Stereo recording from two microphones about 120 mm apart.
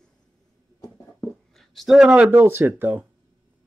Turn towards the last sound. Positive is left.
turn(degrees=-20)  # may be behind; listen again after turning